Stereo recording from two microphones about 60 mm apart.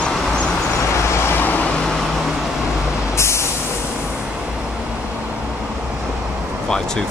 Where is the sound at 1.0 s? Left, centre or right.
Left.